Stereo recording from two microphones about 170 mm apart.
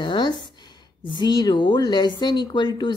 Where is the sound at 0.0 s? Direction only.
25° left (ahead or behind).